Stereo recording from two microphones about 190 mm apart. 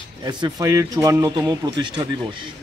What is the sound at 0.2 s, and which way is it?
Speech, 20° right (ahead or behind).